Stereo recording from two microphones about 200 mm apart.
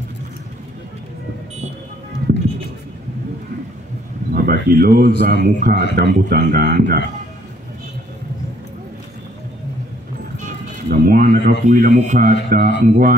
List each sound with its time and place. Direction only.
2.3 s music: 50° right (ahead or behind)
4.3 s a sound: 50° right (ahead or behind)
5.2 s speech: 55° right (ahead or behind)
10.4 s music: 45° right (ahead or behind)
11.6 s speech: 40° right (ahead or behind)